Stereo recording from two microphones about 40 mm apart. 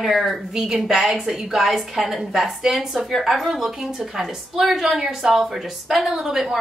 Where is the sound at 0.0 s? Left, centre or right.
Centre.